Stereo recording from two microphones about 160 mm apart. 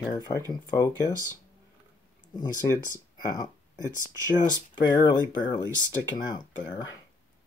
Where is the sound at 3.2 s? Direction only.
20° left (ahead or behind).